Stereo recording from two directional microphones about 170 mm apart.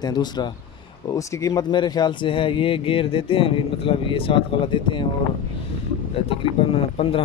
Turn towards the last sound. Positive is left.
turn(degrees=35)  # may be behind; listen again after turning